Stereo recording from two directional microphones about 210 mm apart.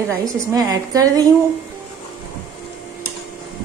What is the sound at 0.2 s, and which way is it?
A woman's voice, 15° right (ahead or behind).